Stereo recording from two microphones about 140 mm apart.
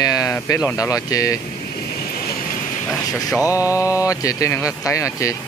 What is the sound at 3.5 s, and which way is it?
Mantra, 10° right (ahead or behind).